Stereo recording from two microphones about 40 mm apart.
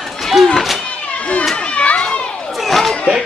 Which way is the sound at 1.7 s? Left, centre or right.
Left.